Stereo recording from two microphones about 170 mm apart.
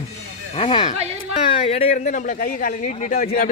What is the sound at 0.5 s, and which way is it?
Speech, 35° left (ahead or behind).